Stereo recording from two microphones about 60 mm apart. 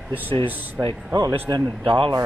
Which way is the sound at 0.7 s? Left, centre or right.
Right.